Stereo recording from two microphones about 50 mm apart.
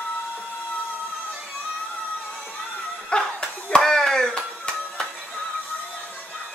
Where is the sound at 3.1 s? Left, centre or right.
Centre.